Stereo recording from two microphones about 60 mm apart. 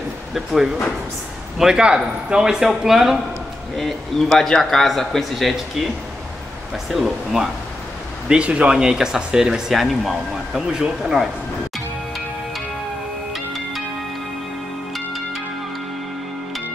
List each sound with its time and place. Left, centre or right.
0.3 s speech: centre
6.9 s speech: centre
8.3 s speech: centre